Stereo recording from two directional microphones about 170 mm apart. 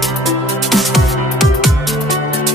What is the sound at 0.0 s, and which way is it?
Music, centre (ahead or behind).